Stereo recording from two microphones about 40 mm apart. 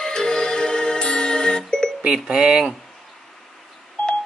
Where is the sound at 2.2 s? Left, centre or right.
Right.